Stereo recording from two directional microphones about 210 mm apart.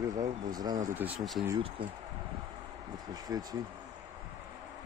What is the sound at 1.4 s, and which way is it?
Speech, 20° right (ahead or behind).